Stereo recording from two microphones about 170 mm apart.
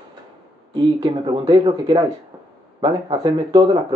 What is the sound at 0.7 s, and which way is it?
Speech, 30° right (ahead or behind).